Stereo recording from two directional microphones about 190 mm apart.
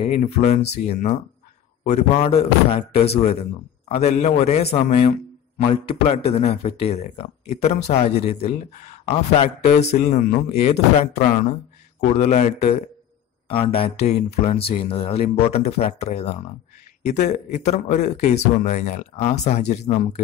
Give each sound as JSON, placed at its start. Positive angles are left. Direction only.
{"t": 0.0, "sound": "a man's voice", "side_deg": 35}